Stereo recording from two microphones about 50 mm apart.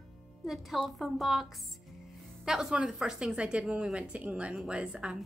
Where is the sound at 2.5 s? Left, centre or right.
Centre.